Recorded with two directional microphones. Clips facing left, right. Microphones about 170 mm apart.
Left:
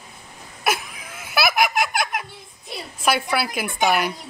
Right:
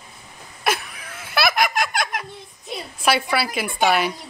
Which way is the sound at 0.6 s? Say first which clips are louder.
Even; 5° left (ahead or behind).